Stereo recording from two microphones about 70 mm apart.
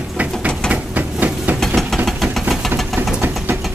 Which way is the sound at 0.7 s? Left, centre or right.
Right.